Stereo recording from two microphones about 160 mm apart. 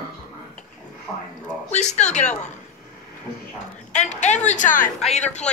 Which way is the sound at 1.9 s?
45° left (ahead or behind).